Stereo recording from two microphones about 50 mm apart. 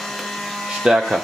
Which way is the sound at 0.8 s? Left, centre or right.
Centre.